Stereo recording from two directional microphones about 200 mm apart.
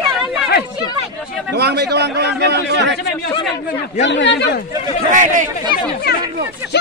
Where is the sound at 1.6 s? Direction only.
55° right (ahead or behind).